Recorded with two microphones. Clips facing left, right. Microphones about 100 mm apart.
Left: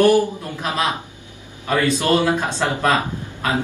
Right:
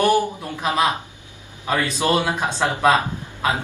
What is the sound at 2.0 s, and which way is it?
Speech, 15° right (ahead or behind).